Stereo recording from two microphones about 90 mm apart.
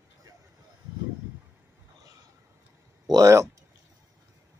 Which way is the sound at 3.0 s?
45° right (ahead or behind).